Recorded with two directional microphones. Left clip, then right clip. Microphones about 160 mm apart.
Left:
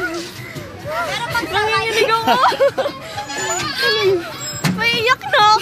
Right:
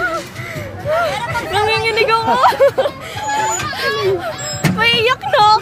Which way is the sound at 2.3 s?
15° right (ahead or behind).